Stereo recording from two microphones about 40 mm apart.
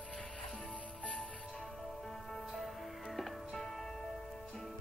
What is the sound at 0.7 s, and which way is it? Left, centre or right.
Music, left.